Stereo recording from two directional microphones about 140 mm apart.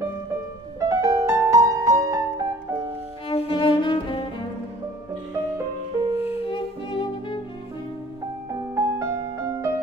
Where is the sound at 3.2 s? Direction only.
40° left (ahead or behind).